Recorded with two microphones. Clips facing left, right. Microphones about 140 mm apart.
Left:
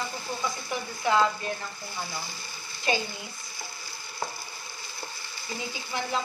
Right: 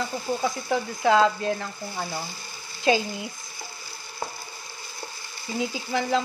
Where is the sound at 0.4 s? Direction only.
90° right.